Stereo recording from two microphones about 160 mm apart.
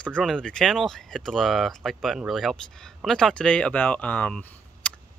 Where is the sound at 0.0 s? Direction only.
5° left (ahead or behind).